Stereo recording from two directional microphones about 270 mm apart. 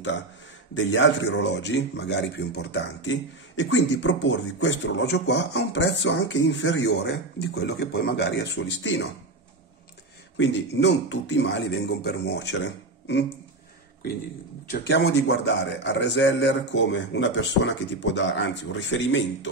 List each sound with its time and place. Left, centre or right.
0.7 s speech: left
10.3 s speech: left
14.7 s speech: left